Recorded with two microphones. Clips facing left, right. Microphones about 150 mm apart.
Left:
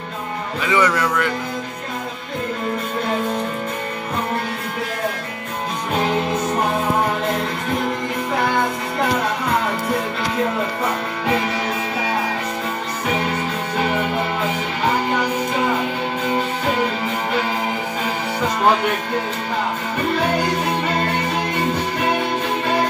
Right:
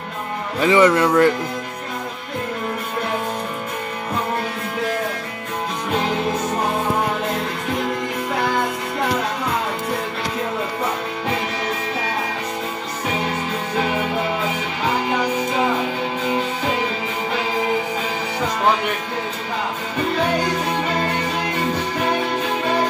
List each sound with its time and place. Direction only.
0.6 s speech: 25° right (ahead or behind)